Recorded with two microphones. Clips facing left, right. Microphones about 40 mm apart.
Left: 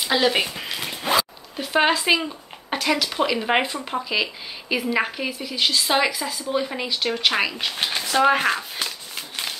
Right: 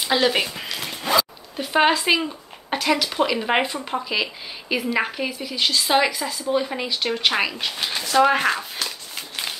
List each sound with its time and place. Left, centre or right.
0.0 s speech: centre
0.7 s zipper: centre
1.6 s speech: centre
7.7 s speech: left
8.1 s speech: centre
8.8 s a sound: centre